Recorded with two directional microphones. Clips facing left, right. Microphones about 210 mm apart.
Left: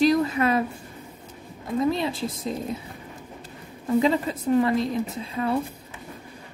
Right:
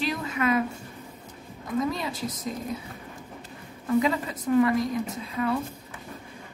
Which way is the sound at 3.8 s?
25° left (ahead or behind).